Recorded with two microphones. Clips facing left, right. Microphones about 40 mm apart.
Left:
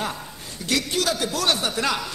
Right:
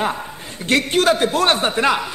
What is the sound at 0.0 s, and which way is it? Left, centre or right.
A man's voice, right.